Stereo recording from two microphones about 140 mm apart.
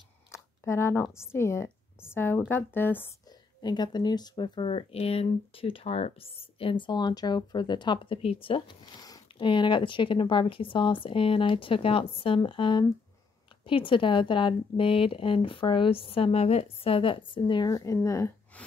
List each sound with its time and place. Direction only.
0.3 s a woman's voice: 20° left (ahead or behind)
3.3 s speech: 30° left (ahead or behind)